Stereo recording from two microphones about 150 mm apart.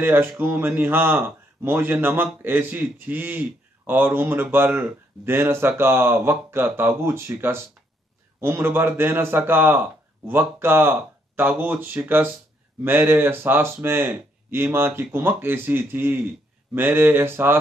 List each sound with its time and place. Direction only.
0.0 s a man's voice: 15° right (ahead or behind)